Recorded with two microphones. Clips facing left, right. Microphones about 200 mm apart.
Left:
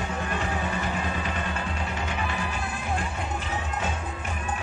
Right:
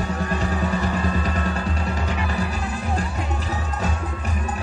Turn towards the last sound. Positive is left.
turn(degrees=-40)  # may be behind; listen again after turning